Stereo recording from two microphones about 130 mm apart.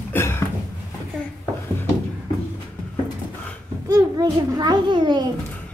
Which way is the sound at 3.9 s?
30° right (ahead or behind).